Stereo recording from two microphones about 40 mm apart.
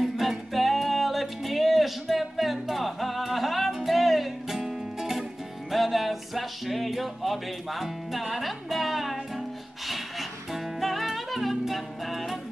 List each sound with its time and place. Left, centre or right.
0.0 s music: centre